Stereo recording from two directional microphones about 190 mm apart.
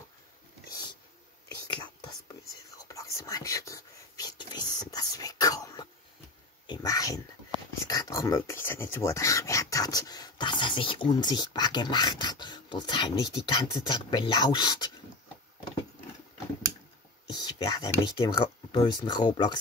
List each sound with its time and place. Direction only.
1.7 s whispering: 25° left (ahead or behind)
6.7 s a sound: 20° left (ahead or behind)
7.8 s speech: 20° left (ahead or behind)
17.3 s speech: 20° left (ahead or behind)